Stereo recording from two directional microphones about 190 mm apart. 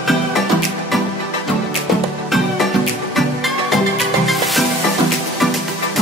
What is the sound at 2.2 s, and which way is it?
Music, centre (ahead or behind).